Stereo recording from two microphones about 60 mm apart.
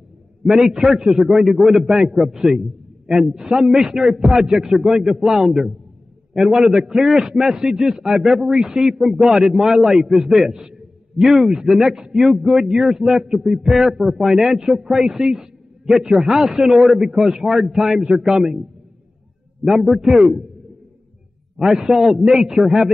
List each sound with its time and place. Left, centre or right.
0.4 s a man's voice: centre
19.6 s a man's voice: centre
21.5 s a man's voice: centre